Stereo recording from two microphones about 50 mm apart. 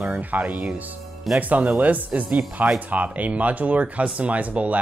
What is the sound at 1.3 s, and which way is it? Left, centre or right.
Speech, centre.